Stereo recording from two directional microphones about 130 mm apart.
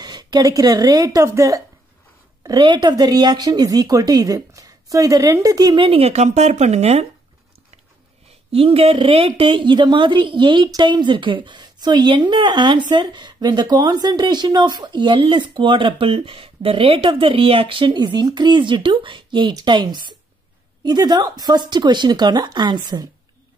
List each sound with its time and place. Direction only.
0.0 s a woman's voice: 30° right (ahead or behind); by 7.1 s 55° right (ahead or behind)
8.5 s a woman's voice: 50° right (ahead or behind)